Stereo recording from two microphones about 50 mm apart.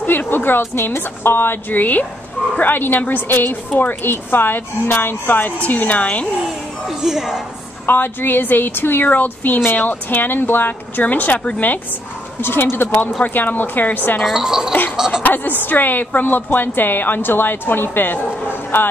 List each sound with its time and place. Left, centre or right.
0.0 s a woman's voice: left
5.6 s speech: left
6.9 s speech: centre
7.8 s a woman's voice: left
9.0 s speech: left
12.4 s a woman's voice: left
13.2 s speech: left
14.2 s speech: centre
15.2 s a woman's voice: left